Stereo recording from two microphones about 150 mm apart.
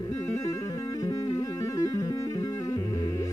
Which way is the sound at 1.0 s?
20° left (ahead or behind).